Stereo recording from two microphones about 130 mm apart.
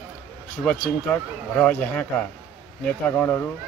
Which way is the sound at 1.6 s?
15° left (ahead or behind).